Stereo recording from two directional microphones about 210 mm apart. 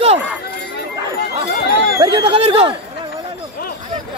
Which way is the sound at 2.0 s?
25° right (ahead or behind).